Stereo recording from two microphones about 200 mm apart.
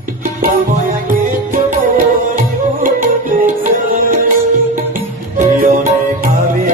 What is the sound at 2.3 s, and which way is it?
Tabla, 40° right (ahead or behind).